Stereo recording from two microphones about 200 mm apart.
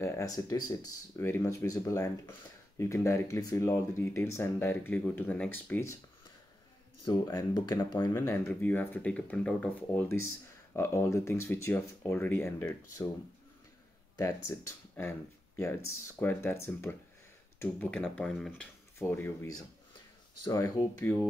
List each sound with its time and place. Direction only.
0.0 s speech: 15° left (ahead or behind)
7.1 s speech: 20° left (ahead or behind)
14.5 s speech: 10° left (ahead or behind)